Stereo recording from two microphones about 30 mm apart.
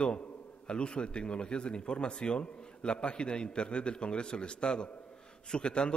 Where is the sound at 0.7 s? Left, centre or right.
Left.